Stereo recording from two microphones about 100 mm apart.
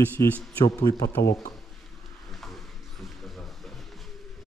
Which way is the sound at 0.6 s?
35° left (ahead or behind).